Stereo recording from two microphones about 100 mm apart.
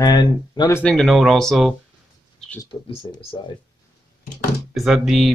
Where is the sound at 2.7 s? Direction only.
55° left (ahead or behind).